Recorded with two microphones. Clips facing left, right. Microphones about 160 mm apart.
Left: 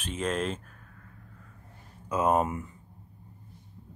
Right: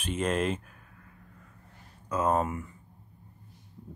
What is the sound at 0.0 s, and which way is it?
Speech, 10° right (ahead or behind).